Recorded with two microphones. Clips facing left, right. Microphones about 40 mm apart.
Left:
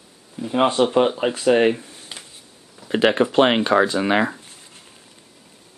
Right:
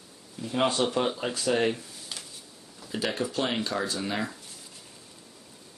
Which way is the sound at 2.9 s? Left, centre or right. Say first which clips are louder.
Left 12 dB; left.